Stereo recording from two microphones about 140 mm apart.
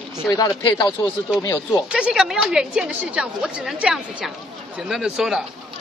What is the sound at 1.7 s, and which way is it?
A woman's voice, 5° right (ahead or behind).